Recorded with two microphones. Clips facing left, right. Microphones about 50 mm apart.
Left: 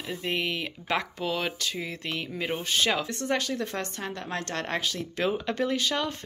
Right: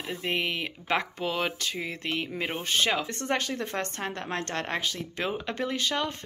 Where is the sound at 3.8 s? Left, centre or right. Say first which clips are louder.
Right 1 dB; right.